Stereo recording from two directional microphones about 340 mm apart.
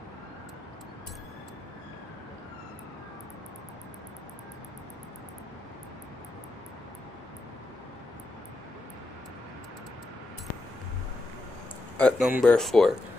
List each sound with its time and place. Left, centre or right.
12.0 s speech: centre